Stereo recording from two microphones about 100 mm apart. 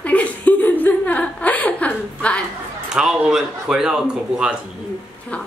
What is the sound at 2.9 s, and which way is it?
A man's voice, 5° right (ahead or behind).